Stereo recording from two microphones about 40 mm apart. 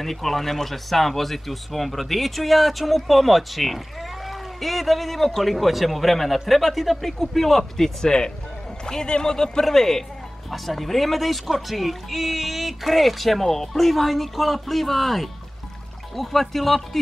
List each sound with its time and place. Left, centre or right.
0.0 s speech: centre